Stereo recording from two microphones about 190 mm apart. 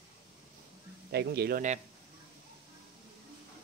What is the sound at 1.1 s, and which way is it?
Speech, 60° right (ahead or behind).